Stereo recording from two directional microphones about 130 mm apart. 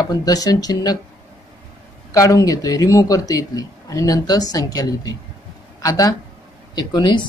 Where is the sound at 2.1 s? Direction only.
25° left (ahead or behind).